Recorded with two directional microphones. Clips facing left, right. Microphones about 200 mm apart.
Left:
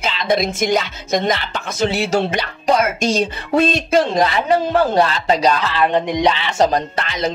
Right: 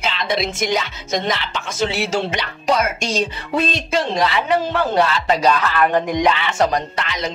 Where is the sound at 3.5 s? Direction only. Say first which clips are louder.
Left 5 dB; 50° left (ahead or behind).